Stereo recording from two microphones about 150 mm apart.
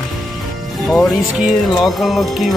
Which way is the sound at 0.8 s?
Centre (ahead or behind).